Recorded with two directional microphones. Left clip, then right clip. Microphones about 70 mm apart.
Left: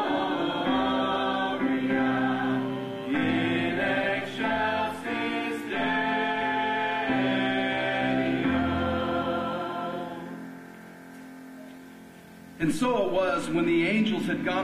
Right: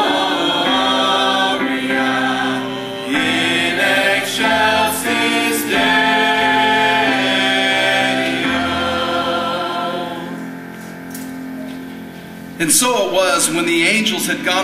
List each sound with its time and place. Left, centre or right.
0.0 s choir: left
12.5 s speech: centre